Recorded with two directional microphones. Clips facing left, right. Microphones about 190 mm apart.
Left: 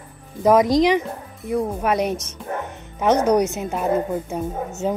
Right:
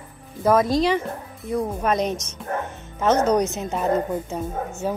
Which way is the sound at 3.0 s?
15° left (ahead or behind).